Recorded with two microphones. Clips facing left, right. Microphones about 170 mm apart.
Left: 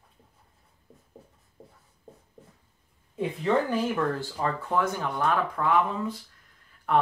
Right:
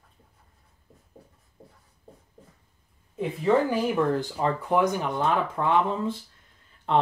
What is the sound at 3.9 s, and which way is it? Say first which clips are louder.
Speech: right 4 dB; 20° right (ahead or behind).